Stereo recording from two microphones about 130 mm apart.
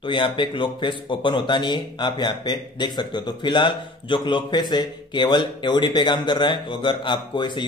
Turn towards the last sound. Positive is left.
turn(degrees=35)  # may be behind; listen again after turning